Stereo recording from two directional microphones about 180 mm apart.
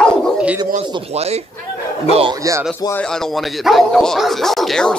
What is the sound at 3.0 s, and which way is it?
Speech, 5° left (ahead or behind).